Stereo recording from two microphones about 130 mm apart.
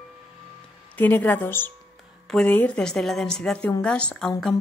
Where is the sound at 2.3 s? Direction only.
5° left (ahead or behind).